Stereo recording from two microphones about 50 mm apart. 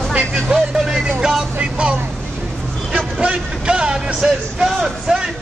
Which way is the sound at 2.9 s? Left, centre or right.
Right.